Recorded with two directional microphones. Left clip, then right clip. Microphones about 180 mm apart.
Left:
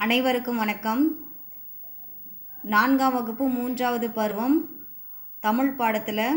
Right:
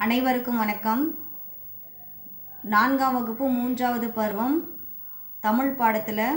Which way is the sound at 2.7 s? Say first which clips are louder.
Even; 30° left (ahead or behind).